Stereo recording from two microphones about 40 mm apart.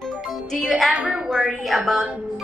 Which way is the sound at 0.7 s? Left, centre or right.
Centre.